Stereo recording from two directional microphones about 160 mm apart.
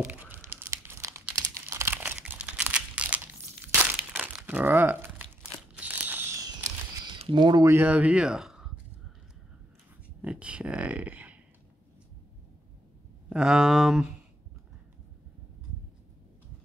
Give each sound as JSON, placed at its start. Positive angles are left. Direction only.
{"t": 0.0, "sound": "crumpling", "side_deg": -10}
{"t": 7.2, "sound": "speech", "side_deg": -30}
{"t": 7.7, "sound": "speech", "side_deg": -10}
{"t": 10.2, "sound": "a sound", "side_deg": -5}
{"t": 13.3, "sound": "speech", "side_deg": -5}